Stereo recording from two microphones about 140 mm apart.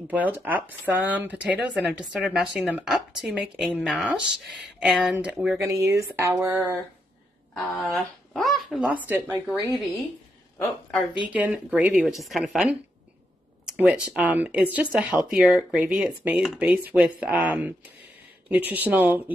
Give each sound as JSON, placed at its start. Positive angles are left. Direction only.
{"t": 0.1, "sound": "a woman's voice", "side_deg": -10}
{"t": 5.6, "sound": "a sound", "side_deg": -20}
{"t": 7.5, "sound": "a woman's voice", "side_deg": 0}
{"t": 11.2, "sound": "a woman's voice", "side_deg": -10}
{"t": 13.7, "sound": "a sound", "side_deg": -10}
{"t": 14.1, "sound": "speech", "side_deg": -10}